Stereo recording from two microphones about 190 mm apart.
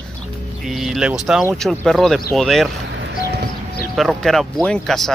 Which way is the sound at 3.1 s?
50° left (ahead or behind).